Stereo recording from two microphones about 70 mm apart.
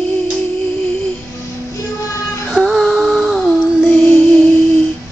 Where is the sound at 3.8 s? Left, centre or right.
Left.